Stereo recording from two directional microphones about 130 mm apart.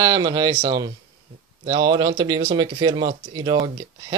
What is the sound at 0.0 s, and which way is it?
Speech, 25° right (ahead or behind).